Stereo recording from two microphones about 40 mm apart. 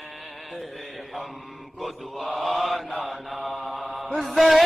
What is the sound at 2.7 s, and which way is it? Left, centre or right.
Mantra, centre.